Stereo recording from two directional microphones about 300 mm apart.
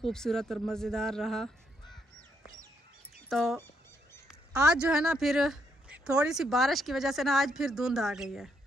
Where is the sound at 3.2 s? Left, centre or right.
Centre.